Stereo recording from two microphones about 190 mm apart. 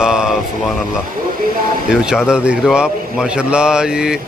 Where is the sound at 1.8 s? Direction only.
5° right (ahead or behind).